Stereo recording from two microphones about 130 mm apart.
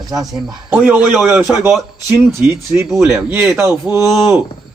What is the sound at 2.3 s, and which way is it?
A man's voice, 20° right (ahead or behind).